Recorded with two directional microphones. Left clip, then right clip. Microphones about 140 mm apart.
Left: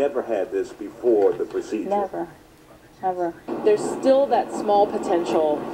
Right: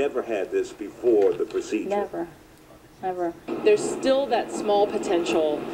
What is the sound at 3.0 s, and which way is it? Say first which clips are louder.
Speech: left 3 dB; 20° left (ahead or behind).